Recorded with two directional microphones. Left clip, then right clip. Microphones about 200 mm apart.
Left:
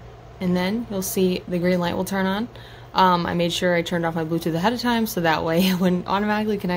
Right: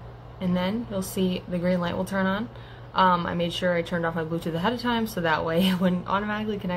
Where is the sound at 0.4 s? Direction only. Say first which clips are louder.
Left 4 dB; 50° left (ahead or behind).